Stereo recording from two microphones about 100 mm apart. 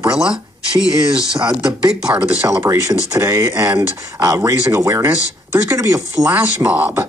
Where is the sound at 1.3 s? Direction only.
45° right (ahead or behind).